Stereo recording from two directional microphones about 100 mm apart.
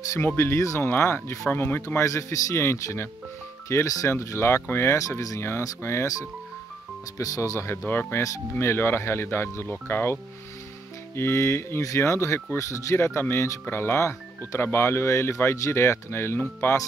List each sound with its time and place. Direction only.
0.4 s speech: 30° left (ahead or behind)
7.2 s speech: 35° left (ahead or behind)
7.7 s speech: 20° left (ahead or behind)
11.1 s speech: 25° left (ahead or behind)